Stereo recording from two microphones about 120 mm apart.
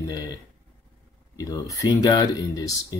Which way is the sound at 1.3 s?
30° left (ahead or behind).